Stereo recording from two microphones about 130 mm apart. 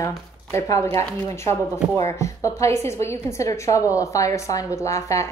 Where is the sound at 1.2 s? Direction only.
20° left (ahead or behind).